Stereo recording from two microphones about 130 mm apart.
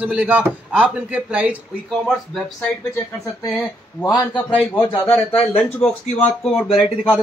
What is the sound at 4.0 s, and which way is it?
Speech, 30° left (ahead or behind).